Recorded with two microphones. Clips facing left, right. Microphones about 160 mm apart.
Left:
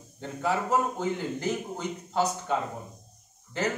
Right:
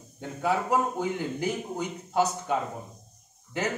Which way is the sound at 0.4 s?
10° right (ahead or behind).